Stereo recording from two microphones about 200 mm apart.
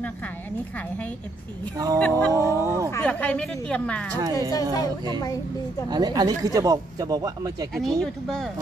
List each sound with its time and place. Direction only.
2.0 s speech: 5° left (ahead or behind)
2.3 s speech: 15° right (ahead or behind)
2.9 s speech: 10° left (ahead or behind)
4.4 s speech: 15° left (ahead or behind)
5.9 s speech: 20° right (ahead or behind)
7.7 s speech: centre (ahead or behind)